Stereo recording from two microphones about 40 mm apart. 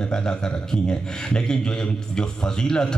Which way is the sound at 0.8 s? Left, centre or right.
Centre.